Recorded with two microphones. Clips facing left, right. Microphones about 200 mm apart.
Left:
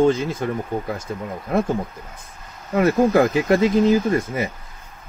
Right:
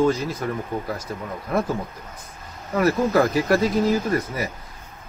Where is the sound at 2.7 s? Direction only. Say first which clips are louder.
Left 3 dB; 25° left (ahead or behind).